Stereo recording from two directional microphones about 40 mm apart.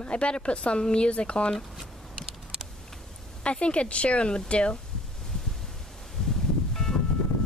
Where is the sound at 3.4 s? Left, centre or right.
Left.